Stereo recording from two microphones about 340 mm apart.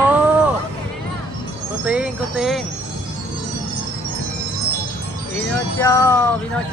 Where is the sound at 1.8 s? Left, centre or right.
Centre.